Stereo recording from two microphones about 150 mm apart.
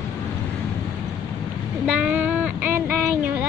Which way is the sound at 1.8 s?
5° right (ahead or behind).